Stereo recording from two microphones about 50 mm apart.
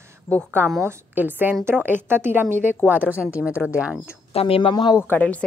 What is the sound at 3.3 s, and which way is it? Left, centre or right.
Speech, right.